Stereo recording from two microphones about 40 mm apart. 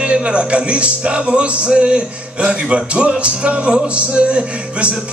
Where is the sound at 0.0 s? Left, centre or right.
Right.